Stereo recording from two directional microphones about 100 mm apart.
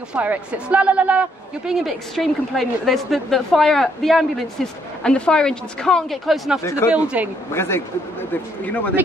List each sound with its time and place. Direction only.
0.1 s speech: 15° right (ahead or behind)
1.7 s a woman's voice: centre (ahead or behind)
6.6 s a man's voice: 30° left (ahead or behind)
6.9 s speech: 10° right (ahead or behind)
7.5 s a man's voice: 25° left (ahead or behind)